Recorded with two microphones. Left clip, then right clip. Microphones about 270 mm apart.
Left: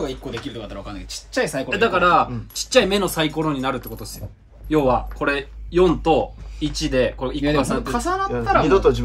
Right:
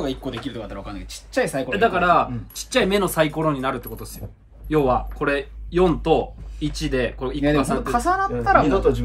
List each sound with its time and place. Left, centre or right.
0.7 s speech: centre
7.9 s speech: centre
8.6 s speech: left